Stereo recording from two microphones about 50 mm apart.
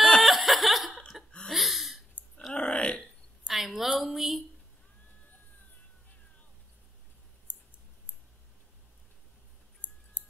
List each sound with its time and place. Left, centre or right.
0.2 s chuckle: centre
1.1 s a sound: centre
1.5 s gasp: centre
2.2 s burping: right
2.5 s burping: left
3.4 s a sound: centre
9.8 s clicking: left